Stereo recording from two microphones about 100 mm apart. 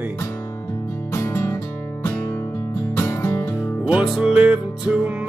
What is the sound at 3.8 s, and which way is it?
Music, 10° right (ahead or behind).